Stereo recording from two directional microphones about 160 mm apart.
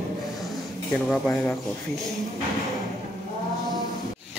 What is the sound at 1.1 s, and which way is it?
Speech, 10° left (ahead or behind).